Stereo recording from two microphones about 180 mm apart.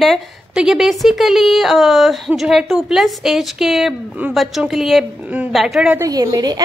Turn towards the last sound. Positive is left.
turn(degrees=-20)  # may be behind; listen again after turning